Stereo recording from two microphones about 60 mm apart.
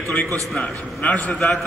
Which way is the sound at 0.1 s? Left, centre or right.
Left.